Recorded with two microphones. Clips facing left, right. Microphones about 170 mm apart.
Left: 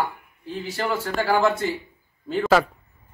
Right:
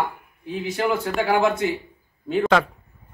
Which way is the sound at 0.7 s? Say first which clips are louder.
Right 3 dB; centre (ahead or behind).